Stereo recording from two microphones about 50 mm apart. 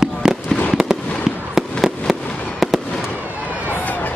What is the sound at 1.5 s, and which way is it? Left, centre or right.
Fireworks, centre.